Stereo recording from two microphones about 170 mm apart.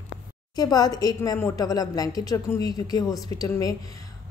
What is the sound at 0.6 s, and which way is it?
A woman's voice, 25° left (ahead or behind).